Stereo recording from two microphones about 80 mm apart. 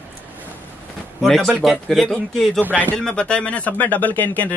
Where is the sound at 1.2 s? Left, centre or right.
Centre.